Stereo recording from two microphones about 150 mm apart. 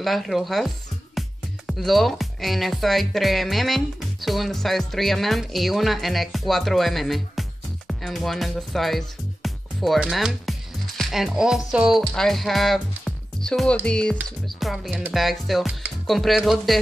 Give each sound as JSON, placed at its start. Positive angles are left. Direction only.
{"t": 0.0, "sound": "speech", "side_deg": 0}
{"t": 1.7, "sound": "speech", "side_deg": 0}
{"t": 11.0, "sound": "music", "side_deg": 0}
{"t": 13.8, "sound": "speech", "side_deg": 5}